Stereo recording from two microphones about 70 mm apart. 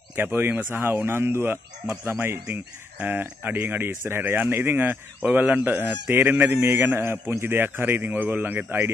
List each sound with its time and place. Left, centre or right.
0.1 s a man's voice: right